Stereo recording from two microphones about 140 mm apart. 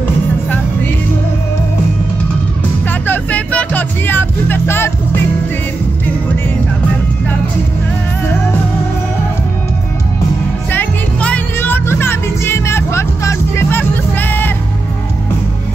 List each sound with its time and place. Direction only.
2.9 s music: 10° left (ahead or behind)
10.7 s music: 10° left (ahead or behind)